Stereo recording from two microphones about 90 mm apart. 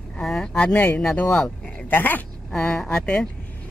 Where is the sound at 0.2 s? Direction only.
5° left (ahead or behind).